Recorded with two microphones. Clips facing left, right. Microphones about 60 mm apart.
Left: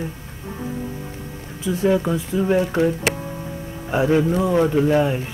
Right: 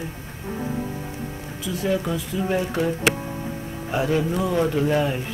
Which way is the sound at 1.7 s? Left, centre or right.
Left.